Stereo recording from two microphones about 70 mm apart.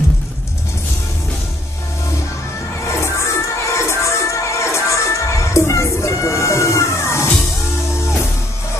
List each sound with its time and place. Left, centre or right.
2.9 s crowd: left